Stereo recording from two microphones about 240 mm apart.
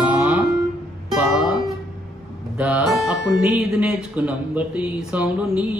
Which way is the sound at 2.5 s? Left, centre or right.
Centre.